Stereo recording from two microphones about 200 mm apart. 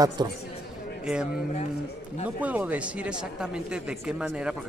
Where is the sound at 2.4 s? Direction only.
5° right (ahead or behind).